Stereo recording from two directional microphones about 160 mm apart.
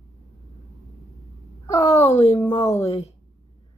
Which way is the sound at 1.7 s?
20° left (ahead or behind).